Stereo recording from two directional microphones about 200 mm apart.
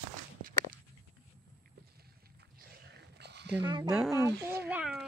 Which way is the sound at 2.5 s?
55° right (ahead or behind).